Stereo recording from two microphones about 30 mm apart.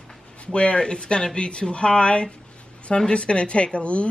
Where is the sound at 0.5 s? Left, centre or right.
Left.